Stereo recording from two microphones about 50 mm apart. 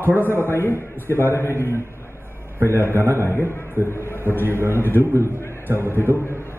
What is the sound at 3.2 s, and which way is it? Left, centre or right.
A man's voice, left.